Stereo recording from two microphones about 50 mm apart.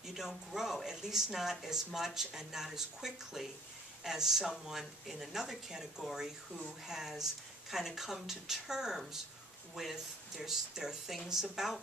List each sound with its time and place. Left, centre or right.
0.0 s speech: centre